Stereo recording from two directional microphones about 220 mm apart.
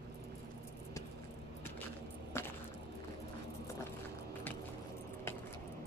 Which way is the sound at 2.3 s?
10° left (ahead or behind).